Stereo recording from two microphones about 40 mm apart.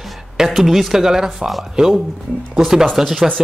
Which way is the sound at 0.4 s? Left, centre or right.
Centre.